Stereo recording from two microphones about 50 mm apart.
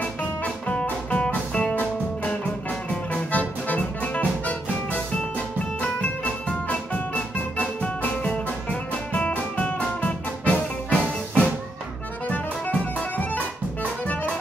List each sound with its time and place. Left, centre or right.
0.0 s music: left
2.9 s music: left